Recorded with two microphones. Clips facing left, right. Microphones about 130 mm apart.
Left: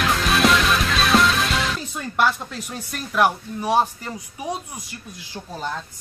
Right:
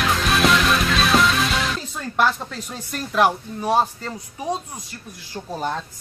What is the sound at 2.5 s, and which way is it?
Speech, 10° left (ahead or behind).